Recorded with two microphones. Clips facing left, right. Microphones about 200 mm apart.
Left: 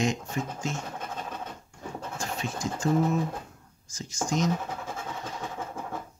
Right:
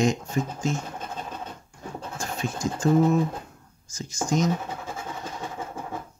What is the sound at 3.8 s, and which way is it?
Speech, centre (ahead or behind).